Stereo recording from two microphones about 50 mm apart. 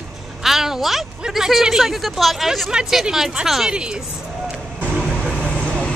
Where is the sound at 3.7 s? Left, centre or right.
Centre.